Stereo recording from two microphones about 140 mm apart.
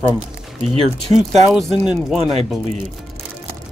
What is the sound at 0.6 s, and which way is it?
Speech, 45° right (ahead or behind).